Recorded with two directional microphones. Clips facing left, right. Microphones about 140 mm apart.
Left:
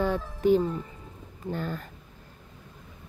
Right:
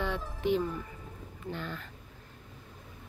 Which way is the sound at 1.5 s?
45° left (ahead or behind).